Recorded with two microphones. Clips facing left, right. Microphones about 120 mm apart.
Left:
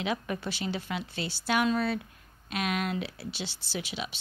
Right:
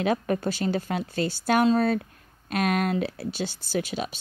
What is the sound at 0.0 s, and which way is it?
Speech, 45° right (ahead or behind).